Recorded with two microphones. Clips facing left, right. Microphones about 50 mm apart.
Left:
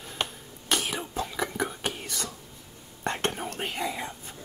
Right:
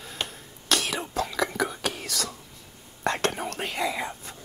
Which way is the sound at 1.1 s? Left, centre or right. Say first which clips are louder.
Right 6 dB; right.